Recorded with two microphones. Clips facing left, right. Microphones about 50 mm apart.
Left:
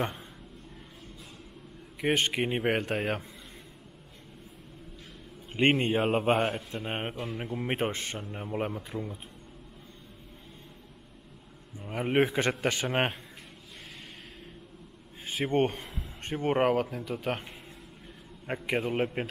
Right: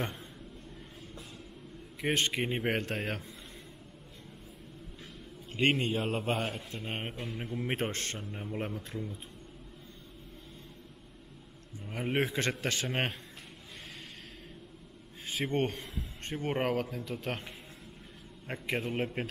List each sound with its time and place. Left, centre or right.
2.0 s speech: centre
5.5 s a man's voice: left
11.8 s speech: centre
15.3 s speech: centre
18.5 s speech: centre